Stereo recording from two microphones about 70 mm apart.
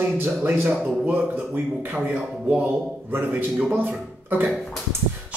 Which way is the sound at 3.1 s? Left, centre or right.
Right.